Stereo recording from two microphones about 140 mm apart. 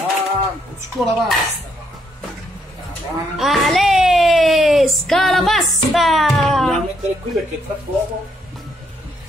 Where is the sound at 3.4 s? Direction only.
Centre (ahead or behind).